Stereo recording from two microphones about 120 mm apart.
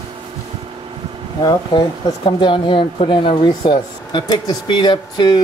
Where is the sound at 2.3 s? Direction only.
45° left (ahead or behind).